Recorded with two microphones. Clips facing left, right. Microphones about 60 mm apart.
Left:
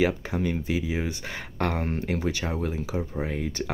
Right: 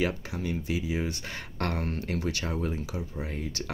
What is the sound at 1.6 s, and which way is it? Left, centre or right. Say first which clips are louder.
Speech: left 4 dB; centre.